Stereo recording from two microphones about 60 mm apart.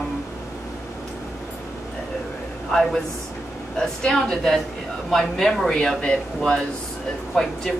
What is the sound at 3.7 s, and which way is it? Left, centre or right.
A woman's voice, centre.